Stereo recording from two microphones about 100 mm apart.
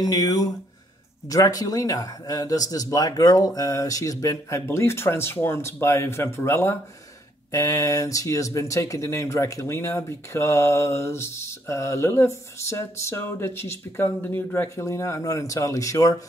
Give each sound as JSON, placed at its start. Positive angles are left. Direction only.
{"t": 0.0, "sound": "speech", "side_deg": 40}